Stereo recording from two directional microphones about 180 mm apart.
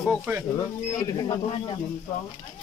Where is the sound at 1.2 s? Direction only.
30° left (ahead or behind).